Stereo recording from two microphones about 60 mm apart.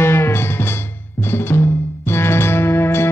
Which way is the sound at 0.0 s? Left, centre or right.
Left.